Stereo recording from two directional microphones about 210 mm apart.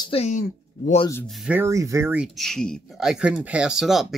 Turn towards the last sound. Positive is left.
turn(degrees=0)  # may be behind; listen again after turning